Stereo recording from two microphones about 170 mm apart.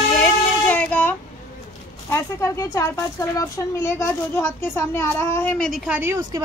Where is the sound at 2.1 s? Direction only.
15° left (ahead or behind).